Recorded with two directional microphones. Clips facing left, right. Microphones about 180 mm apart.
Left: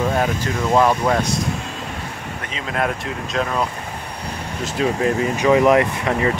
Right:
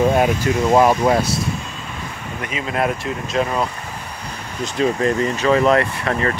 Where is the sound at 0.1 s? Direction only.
15° right (ahead or behind).